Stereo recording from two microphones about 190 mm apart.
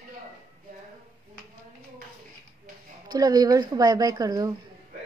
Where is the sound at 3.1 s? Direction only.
20° right (ahead or behind).